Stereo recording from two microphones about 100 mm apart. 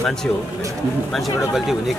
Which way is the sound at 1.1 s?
Centre (ahead or behind).